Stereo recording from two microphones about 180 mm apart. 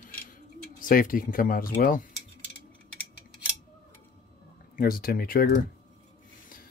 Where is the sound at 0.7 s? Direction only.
50° left (ahead or behind).